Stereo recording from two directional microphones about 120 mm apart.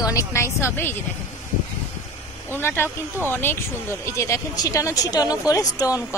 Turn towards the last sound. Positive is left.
turn(degrees=30)  # may be behind; listen again after turning